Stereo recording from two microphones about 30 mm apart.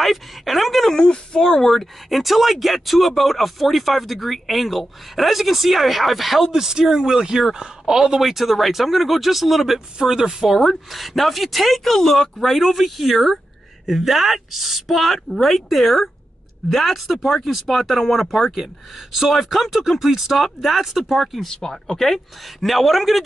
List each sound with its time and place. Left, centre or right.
0.0 s a sound: centre
0.9 s a sound: left
1.4 s speech: centre
1.8 s a man's voice: centre
8.2 s speech: centre
10.0 s speech: centre
10.6 s speech: centre
21.6 s speech: centre
22.6 s speech: centre